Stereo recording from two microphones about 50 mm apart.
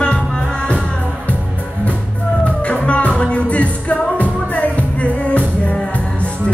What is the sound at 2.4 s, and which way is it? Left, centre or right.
Music, left.